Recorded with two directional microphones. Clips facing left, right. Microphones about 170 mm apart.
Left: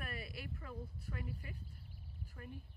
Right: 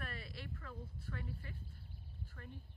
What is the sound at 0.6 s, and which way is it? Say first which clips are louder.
A woman's voice: left 2 dB; 15° left (ahead or behind).